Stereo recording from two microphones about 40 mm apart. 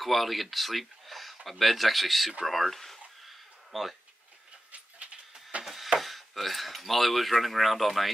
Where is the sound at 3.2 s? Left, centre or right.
Centre.